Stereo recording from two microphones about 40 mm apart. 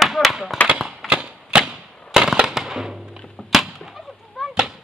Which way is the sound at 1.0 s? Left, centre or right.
Right.